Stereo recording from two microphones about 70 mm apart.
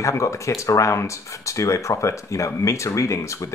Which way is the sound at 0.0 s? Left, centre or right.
Left.